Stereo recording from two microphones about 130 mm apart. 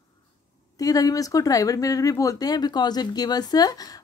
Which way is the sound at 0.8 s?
25° left (ahead or behind).